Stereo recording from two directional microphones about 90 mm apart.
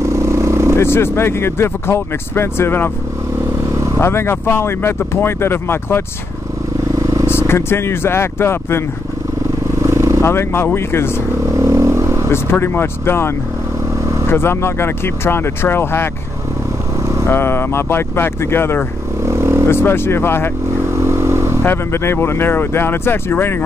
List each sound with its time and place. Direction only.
0.0 s vehicle: 30° right (ahead or behind)
0.7 s speech: 25° left (ahead or behind)
4.0 s speech: 30° left (ahead or behind)
7.2 s speech: 25° left (ahead or behind)
9.8 s vehicle: 30° right (ahead or behind)
10.2 s speech: 25° left (ahead or behind)
11.4 s vehicle: 30° right (ahead or behind)
12.3 s speech: 25° left (ahead or behind)
14.3 s speech: 25° left (ahead or behind)
17.3 s speech: 25° left (ahead or behind)
19.2 s vehicle: 30° right (ahead or behind)
19.7 s speech: 25° left (ahead or behind)
20.8 s vehicle: 30° right (ahead or behind)
21.6 s speech: 25° left (ahead or behind)